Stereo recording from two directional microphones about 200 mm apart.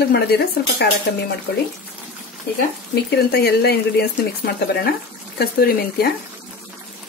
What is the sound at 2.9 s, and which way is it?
Speech, 55° left (ahead or behind).